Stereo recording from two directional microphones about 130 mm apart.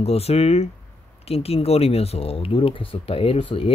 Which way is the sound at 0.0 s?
50° left (ahead or behind).